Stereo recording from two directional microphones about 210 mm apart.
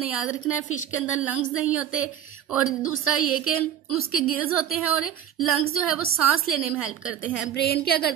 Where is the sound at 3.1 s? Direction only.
90° left.